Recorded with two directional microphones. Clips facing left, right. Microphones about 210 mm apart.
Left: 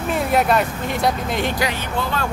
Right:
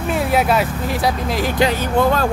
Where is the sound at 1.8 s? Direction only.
40° right (ahead or behind).